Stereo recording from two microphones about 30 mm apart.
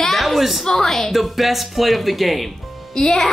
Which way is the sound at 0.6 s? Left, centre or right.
Centre.